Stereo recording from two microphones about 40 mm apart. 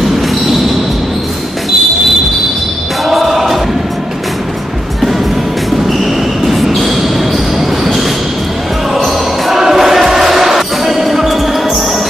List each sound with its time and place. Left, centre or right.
3.1 s choir: centre
5.9 s a sound: centre
7.8 s train: centre
8.9 s basketball bounce: centre